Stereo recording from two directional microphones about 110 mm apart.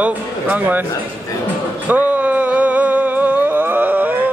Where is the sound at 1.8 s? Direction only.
15° right (ahead or behind).